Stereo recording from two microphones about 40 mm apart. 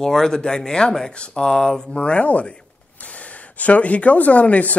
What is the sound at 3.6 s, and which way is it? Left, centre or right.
Speech, left.